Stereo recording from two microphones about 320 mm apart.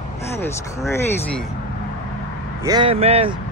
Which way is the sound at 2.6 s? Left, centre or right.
Centre.